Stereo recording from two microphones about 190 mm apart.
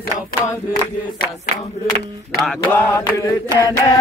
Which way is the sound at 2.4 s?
5° left (ahead or behind).